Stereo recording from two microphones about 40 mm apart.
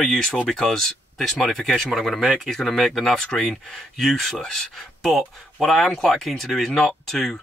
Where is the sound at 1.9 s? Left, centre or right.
Centre.